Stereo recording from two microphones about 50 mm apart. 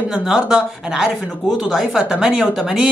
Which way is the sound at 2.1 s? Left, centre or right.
Centre.